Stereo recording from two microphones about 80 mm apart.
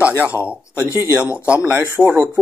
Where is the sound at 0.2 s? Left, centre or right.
Right.